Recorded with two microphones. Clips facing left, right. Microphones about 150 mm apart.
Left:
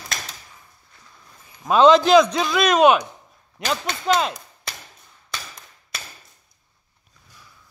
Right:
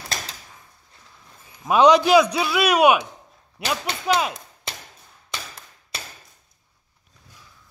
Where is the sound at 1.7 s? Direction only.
15° right (ahead or behind).